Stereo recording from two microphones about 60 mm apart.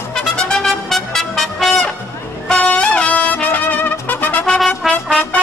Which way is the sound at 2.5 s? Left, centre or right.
Centre.